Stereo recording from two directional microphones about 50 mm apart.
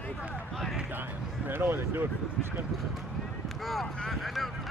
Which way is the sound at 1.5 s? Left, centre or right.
Right.